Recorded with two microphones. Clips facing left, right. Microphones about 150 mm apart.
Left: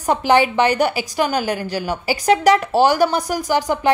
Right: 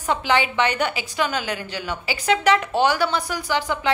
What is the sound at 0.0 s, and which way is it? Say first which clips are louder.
A woman's voice: left 6 dB; 40° left (ahead or behind).